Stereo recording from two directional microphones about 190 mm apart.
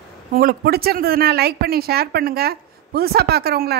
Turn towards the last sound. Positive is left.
turn(degrees=-55)  # may be behind; listen again after turning